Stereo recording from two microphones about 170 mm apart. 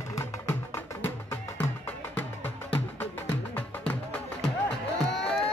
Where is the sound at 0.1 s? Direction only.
15° left (ahead or behind).